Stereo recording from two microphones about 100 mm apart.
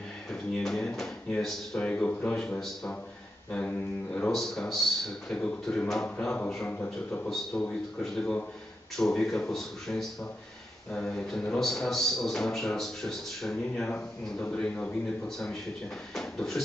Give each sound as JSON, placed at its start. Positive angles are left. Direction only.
{"t": 0.3, "sound": "a man's voice", "side_deg": 5}
{"t": 7.5, "sound": "a man's voice", "side_deg": 20}
{"t": 8.9, "sound": "a man's voice", "side_deg": 5}
{"t": 16.2, "sound": "a sound", "side_deg": 5}